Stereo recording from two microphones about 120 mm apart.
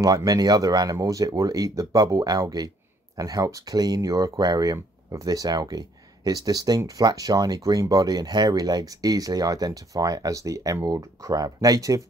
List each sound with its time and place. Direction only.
0.0 s speech: 30° right (ahead or behind)